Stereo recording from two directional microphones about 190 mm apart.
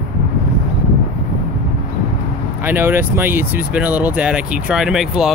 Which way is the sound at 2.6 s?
10° right (ahead or behind).